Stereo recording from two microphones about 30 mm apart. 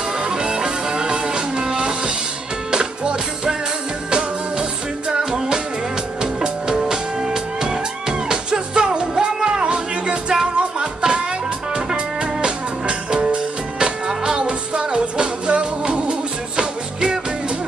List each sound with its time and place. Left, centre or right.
0.2 s music: right